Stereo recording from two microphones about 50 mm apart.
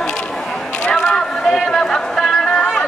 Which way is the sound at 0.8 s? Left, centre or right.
Centre.